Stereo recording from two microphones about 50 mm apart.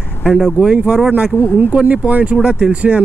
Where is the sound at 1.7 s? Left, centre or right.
Right.